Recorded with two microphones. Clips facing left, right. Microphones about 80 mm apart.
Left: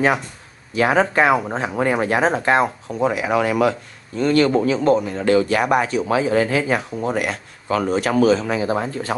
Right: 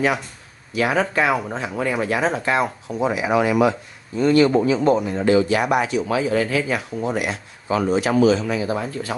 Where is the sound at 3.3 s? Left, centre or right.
Left.